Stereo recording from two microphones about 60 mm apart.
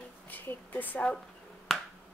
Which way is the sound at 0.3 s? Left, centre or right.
Left.